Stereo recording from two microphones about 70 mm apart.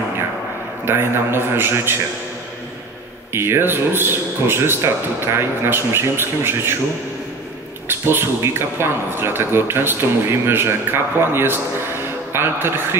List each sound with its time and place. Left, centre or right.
0.8 s speech: right
3.3 s speech: right
8.0 s speech: right